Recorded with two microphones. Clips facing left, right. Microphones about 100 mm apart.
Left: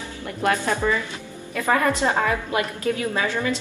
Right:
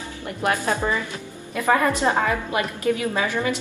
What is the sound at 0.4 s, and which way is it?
A woman's voice, 25° right (ahead or behind).